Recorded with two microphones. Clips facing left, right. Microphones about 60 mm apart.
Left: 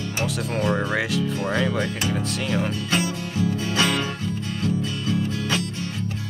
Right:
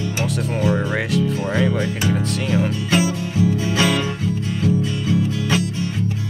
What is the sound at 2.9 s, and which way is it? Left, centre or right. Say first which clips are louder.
Music: right 5 dB; right.